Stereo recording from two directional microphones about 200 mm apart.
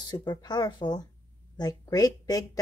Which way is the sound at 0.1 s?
20° left (ahead or behind).